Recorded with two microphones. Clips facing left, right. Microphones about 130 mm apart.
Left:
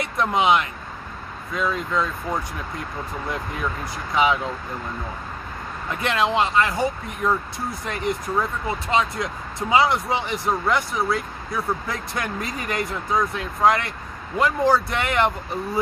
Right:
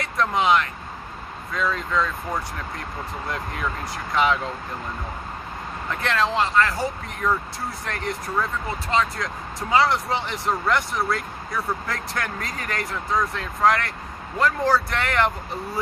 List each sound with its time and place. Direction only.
0.0 s speech: 15° left (ahead or behind)
4.1 s speech: 10° left (ahead or behind)
5.9 s speech: 15° left (ahead or behind)